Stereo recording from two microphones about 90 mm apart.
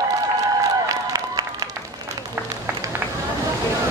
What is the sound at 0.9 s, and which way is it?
Applause, 45° right (ahead or behind).